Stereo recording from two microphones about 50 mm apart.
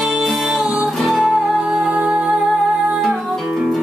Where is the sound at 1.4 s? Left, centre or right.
Centre.